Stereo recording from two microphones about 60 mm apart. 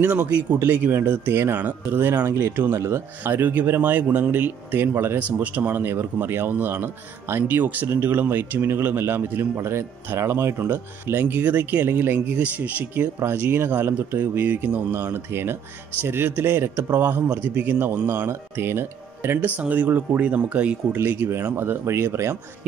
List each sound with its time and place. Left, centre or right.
0.7 s speech: right
0.9 s speech: right
5.4 s speech: right
13.2 s speech: right
17.6 s speech: right
19.4 s speech: right
21.5 s speech: right